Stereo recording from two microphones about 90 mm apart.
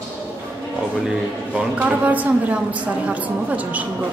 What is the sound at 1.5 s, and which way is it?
A man's voice, 15° right (ahead or behind).